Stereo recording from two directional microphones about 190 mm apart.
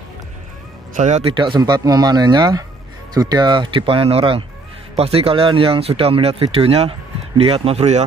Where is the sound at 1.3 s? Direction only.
25° right (ahead or behind).